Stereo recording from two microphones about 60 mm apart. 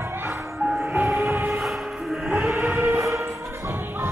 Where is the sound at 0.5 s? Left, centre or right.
Centre.